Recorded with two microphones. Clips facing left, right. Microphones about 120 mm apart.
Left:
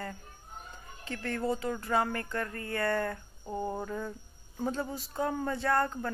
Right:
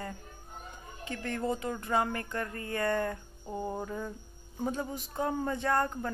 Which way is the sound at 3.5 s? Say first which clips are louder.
Left 1 dB; 10° right (ahead or behind).